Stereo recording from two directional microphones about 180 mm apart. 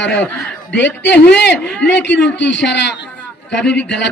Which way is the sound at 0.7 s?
75° left (ahead or behind).